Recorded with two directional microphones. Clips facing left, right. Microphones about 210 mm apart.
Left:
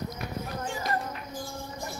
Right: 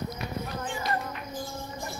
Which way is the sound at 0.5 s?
45° left (ahead or behind).